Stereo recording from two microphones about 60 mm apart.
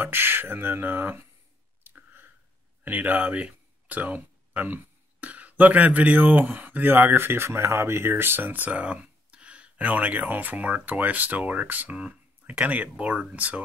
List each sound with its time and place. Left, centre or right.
0.0 s speech: right
1.8 s clicking: right
2.8 s speech: right